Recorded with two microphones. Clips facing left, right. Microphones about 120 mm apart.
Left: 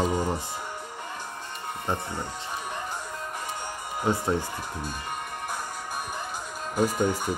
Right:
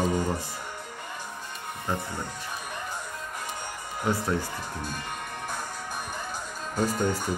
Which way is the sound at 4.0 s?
20° left (ahead or behind).